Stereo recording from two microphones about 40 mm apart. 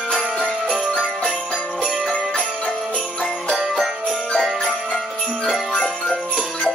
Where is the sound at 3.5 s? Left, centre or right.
Centre.